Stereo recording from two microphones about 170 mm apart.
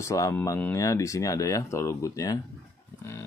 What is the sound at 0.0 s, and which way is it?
Speech, 20° left (ahead or behind).